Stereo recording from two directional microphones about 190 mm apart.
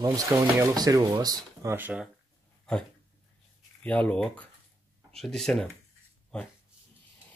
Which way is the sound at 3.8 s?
5° left (ahead or behind).